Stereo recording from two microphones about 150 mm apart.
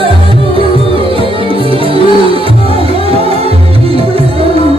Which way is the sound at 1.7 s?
35° right (ahead or behind).